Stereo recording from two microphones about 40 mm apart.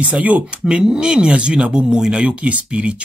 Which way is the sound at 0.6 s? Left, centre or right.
Centre.